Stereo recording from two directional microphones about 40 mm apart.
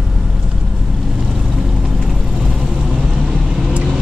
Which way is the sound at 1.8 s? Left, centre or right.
Centre.